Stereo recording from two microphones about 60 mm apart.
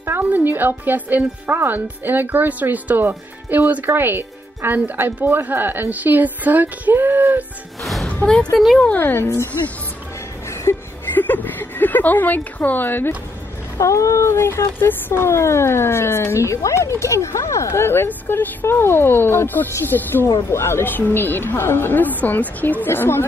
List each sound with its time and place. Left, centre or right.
0.2 s speech: right
7.8 s music: centre
8.7 s a woman's voice: left
9.0 s speech: left
10.7 s a sound: left
11.1 s a sound: left
13.7 s speech: left
20.4 s speech: left